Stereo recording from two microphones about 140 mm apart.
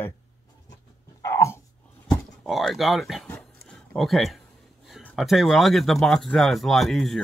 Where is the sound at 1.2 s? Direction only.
20° left (ahead or behind).